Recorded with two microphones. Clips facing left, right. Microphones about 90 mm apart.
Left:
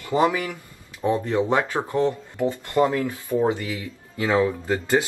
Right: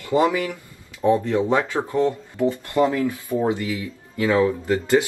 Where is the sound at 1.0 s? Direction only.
15° left (ahead or behind).